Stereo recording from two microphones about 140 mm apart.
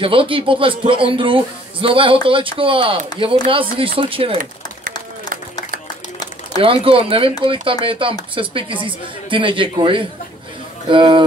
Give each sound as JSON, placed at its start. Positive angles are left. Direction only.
{"t": 0.0, "sound": "a man's voice", "side_deg": -40}
{"t": 6.6, "sound": "a man's voice", "side_deg": -40}